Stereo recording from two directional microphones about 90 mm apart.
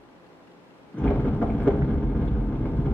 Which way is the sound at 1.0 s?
20° left (ahead or behind).